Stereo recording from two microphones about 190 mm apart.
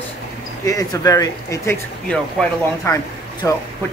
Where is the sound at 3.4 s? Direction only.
15° left (ahead or behind).